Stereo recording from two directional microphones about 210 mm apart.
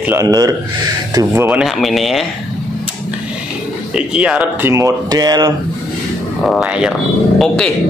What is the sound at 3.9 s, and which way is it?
Speech, 5° right (ahead or behind).